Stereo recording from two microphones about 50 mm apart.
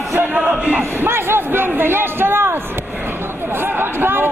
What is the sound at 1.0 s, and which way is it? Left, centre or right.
Speech, right.